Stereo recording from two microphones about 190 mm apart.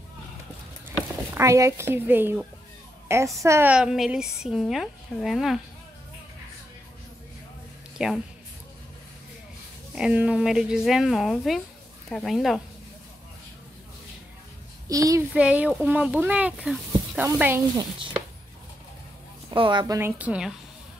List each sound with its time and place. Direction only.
1.3 s a woman's voice: 15° right (ahead or behind)
8.0 s a woman's voice: 5° right (ahead or behind)
9.9 s a woman's voice: 5° right (ahead or behind)
14.9 s speech: 15° right (ahead or behind)
15.3 s speech: 5° right (ahead or behind)
17.4 s speech: 10° right (ahead or behind)
19.5 s a woman's voice: 25° right (ahead or behind)
20.0 s speech: 10° right (ahead or behind)